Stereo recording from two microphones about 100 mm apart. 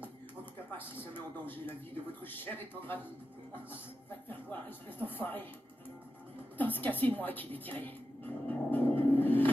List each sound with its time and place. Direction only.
0.7 s a man's voice: 20° left (ahead or behind)
4.3 s speech: 20° left (ahead or behind)
6.6 s a sound: 20° left (ahead or behind)